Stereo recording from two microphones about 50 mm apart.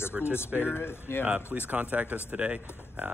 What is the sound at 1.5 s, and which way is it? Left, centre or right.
Speech, right.